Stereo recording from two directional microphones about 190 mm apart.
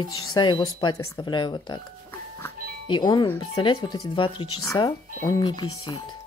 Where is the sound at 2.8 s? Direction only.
25° left (ahead or behind).